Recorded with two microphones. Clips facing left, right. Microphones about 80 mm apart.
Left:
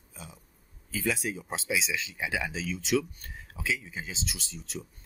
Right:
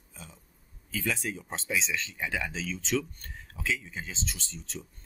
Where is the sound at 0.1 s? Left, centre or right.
Centre.